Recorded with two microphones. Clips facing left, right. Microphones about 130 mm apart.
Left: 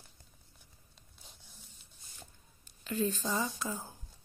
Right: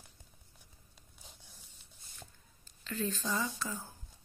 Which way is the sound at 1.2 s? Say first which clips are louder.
Right 1 dB; 15° right (ahead or behind).